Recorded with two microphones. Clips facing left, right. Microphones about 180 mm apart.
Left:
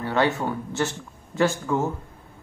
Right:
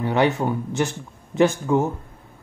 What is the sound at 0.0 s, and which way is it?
Speech, 15° right (ahead or behind).